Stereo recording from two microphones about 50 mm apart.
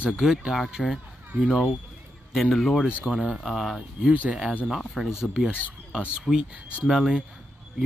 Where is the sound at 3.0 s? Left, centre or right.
Centre.